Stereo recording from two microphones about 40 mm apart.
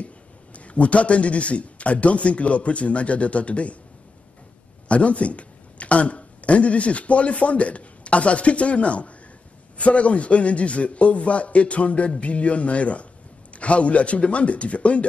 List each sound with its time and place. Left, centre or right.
0.0 s a man's voice: left
4.8 s a man's voice: left